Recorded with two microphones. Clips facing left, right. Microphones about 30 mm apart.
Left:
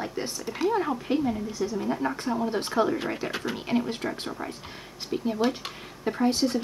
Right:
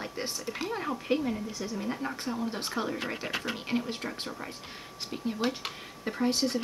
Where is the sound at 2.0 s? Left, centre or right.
Centre.